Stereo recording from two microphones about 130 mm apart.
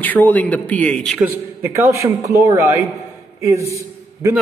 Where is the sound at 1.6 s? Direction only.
20° right (ahead or behind).